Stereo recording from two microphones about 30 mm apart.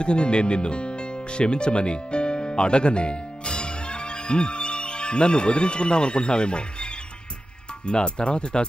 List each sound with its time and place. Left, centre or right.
0.0 s speech: left